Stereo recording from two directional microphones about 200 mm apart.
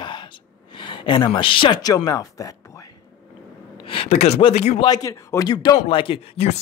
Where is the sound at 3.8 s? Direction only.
25° left (ahead or behind).